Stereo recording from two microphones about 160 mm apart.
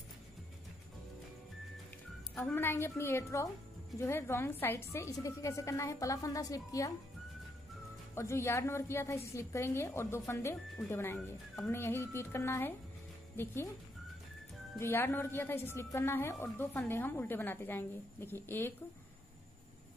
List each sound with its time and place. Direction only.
2.3 s a woman's voice: 15° left (ahead or behind)
8.1 s a woman's voice: 15° left (ahead or behind)
11.1 s speech: centre (ahead or behind)
11.7 s a woman's voice: 15° left (ahead or behind)
14.8 s a woman's voice: 15° left (ahead or behind)